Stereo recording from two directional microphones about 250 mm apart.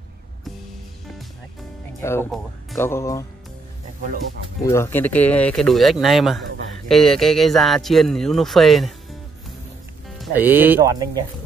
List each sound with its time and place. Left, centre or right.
2.0 s speech: centre
4.6 s speech: centre